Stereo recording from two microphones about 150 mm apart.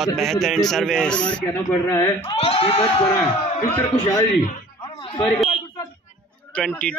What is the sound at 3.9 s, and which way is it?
Speech, 25° left (ahead or behind).